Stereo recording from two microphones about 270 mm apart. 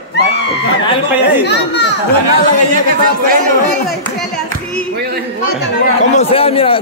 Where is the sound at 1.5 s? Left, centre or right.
Left.